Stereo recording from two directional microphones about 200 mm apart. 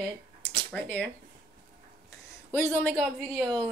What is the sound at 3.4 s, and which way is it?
Speech, 20° right (ahead or behind).